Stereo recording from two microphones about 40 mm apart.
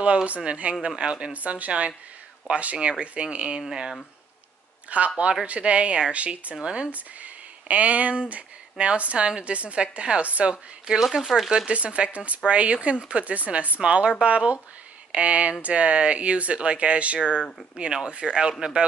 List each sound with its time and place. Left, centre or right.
0.0 s speech: right
1.3 s speech: right
1.7 s speech: right
4.8 s speech: right
6.9 s speech: right
10.2 s speech: right
11.1 s speech: centre
11.5 s speech: right